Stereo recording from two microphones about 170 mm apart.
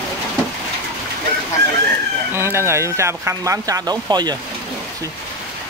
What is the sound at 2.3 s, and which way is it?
Speech, 15° right (ahead or behind).